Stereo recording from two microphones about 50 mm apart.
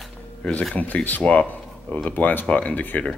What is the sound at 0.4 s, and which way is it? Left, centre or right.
Speech, left.